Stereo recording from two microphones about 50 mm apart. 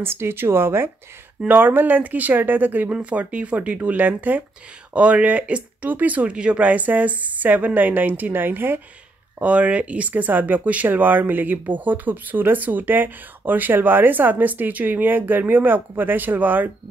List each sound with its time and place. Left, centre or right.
0.0 s speech: right
1.5 s speech: right
2.9 s speech: right
6.3 s speech: centre
6.6 s speech: right
9.4 s speech: right